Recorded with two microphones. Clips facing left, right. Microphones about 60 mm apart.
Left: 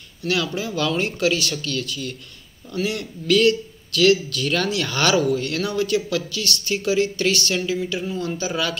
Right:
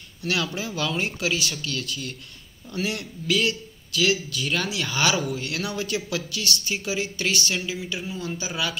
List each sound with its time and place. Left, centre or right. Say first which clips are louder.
0.2 s speech: left 3 dB; right
1.7 s a man's voice: left 4 dB; right
7.5 s a man's voice: left 6 dB; centre